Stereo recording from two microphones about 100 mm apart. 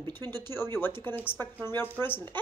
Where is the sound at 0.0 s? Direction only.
45° right (ahead or behind).